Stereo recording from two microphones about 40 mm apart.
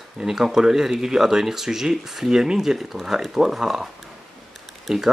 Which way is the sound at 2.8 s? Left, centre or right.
Centre.